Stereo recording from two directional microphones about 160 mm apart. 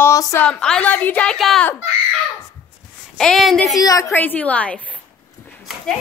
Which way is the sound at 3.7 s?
20° left (ahead or behind).